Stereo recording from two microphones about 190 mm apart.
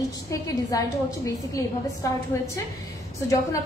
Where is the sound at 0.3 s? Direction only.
15° left (ahead or behind).